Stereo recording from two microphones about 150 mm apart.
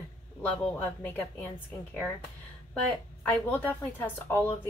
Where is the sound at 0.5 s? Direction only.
10° left (ahead or behind).